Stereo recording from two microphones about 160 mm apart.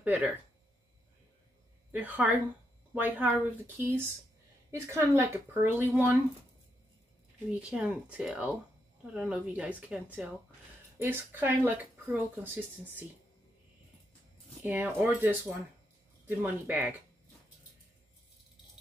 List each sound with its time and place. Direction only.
0.0 s speech: 10° right (ahead or behind)
1.9 s speech: 10° right (ahead or behind)
7.7 s speech: 10° right (ahead or behind)
14.6 s speech: 10° right (ahead or behind)